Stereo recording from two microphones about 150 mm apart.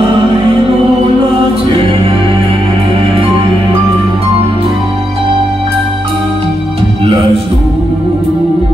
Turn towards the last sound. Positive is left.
turn(degrees=-40)  # may be behind; listen again after turning